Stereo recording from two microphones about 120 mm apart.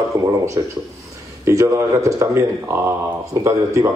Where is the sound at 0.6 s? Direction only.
30° right (ahead or behind).